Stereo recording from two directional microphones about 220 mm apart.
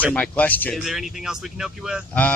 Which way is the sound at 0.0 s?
5° left (ahead or behind).